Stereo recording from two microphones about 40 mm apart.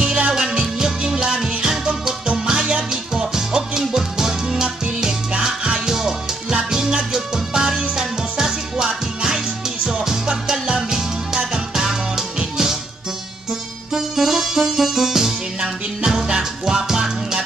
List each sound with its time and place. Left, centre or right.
0.0 s music: right
13.9 s music: centre